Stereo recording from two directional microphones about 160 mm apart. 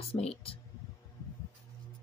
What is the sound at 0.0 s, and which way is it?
Speech, 40° left (ahead or behind).